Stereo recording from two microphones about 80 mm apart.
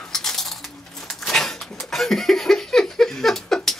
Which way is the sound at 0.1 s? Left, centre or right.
Centre.